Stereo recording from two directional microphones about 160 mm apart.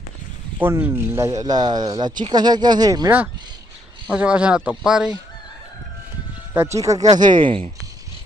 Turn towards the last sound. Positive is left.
turn(degrees=-35)  # may be behind; listen again after turning